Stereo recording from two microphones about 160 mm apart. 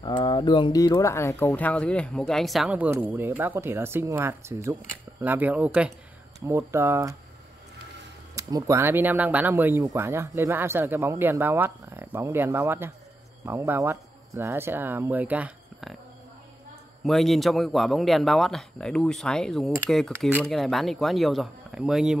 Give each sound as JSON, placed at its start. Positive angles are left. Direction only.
{"t": 0.0, "sound": "speech", "side_deg": 30}
{"t": 8.4, "sound": "speech", "side_deg": -20}
{"t": 17.0, "sound": "speech", "side_deg": 0}